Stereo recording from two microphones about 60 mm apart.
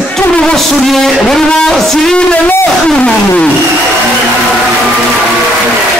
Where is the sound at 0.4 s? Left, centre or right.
Centre.